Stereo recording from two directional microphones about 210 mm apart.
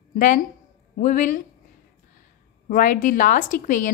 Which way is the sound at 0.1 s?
40° left (ahead or behind).